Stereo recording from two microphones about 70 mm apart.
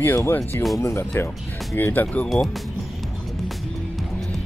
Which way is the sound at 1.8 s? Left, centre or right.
Left.